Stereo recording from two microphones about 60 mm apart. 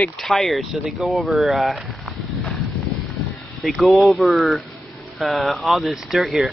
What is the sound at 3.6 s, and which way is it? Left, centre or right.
Speech, centre.